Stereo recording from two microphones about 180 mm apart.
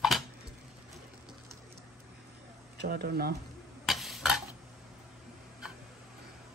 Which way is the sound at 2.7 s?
60° right (ahead or behind).